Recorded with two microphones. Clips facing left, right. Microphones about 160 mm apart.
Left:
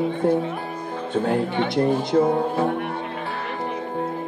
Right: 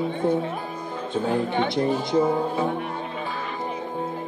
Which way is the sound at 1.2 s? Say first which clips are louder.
Left 1 dB; 60° left (ahead or behind).